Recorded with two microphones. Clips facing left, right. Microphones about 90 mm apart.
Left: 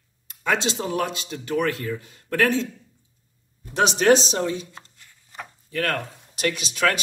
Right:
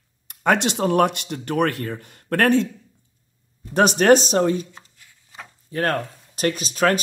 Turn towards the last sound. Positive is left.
turn(degrees=-40)  # may be behind; listen again after turning